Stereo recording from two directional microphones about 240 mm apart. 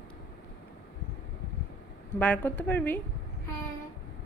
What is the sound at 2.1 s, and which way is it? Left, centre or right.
Speech, centre.